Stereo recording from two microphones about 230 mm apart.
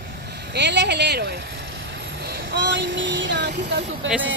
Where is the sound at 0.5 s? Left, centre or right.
Right.